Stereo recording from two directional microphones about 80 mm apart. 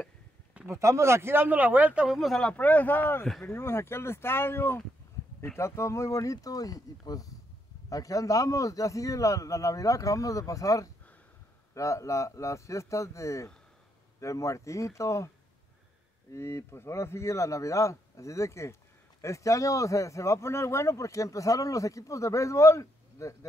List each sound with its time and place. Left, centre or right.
0.7 s speech: right; by 2.0 s centre
2.0 s speech: centre
2.4 s a man's voice: centre; by 23.3 s left